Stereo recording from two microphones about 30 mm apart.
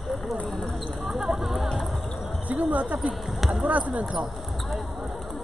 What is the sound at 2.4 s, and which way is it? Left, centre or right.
Speech, right.